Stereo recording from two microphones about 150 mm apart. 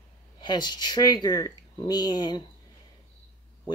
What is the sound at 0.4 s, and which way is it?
Speech, 30° left (ahead or behind).